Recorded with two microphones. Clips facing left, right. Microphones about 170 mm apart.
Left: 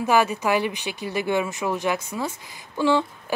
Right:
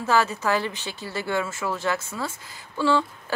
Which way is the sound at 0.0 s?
15° left (ahead or behind).